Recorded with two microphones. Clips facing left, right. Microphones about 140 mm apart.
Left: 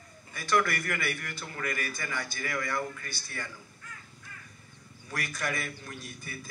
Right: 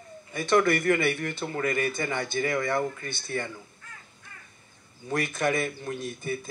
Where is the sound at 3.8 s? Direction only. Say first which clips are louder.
Even; 30° right (ahead or behind).